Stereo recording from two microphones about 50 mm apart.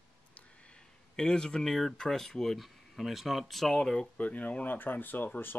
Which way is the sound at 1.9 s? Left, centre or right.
Centre.